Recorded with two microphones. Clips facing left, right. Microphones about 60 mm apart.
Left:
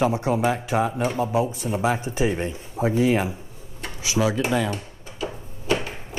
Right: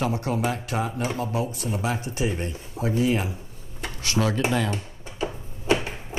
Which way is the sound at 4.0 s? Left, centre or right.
Centre.